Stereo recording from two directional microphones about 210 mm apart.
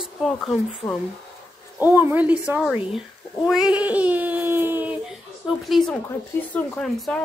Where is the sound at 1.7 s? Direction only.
10° right (ahead or behind).